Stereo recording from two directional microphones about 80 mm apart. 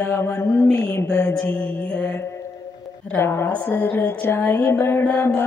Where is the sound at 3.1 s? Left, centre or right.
Left.